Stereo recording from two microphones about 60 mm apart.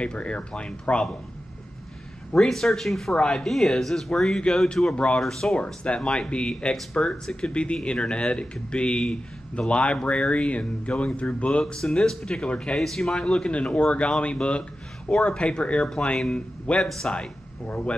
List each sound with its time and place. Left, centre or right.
0.0 s speech: centre
2.3 s speech: centre
3.2 s speech: centre
3.4 s speech: centre
5.2 s speech: centre
11.6 s speech: centre